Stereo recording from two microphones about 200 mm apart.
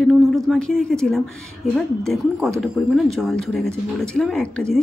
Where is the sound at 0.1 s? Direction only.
Centre (ahead or behind).